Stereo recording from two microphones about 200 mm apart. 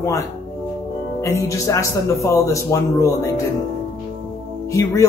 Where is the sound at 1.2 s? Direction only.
15° left (ahead or behind).